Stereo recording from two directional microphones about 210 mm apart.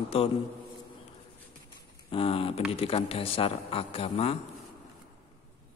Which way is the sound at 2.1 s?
25° left (ahead or behind).